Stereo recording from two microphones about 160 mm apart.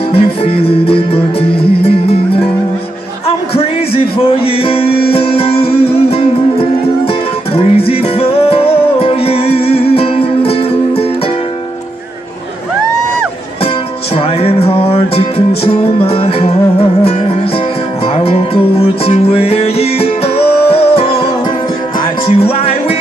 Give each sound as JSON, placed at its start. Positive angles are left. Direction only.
{"t": 0.1, "sound": "music", "side_deg": 35}
{"t": 14.1, "sound": "music", "side_deg": 35}
{"t": 18.0, "sound": "music", "side_deg": 40}
{"t": 22.2, "sound": "music", "side_deg": 40}